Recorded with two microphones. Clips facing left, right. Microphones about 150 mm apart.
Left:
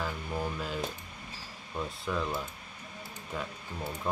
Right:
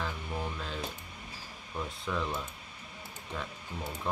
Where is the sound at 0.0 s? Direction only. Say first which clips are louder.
Left 2 dB; 5° left (ahead or behind).